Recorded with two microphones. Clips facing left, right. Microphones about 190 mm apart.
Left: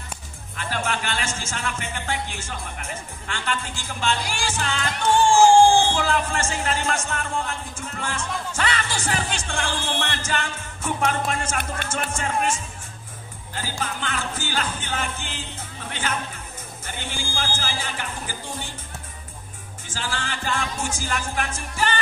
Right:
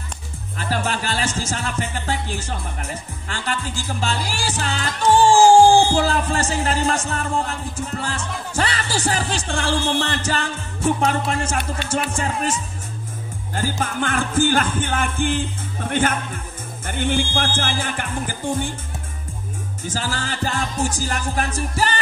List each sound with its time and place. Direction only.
0.6 s music: 40° right (ahead or behind)
13.6 s music: 50° right (ahead or behind)
19.9 s music: 40° right (ahead or behind)